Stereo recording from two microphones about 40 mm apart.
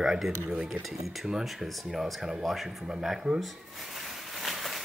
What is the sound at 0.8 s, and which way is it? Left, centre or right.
Speech, centre.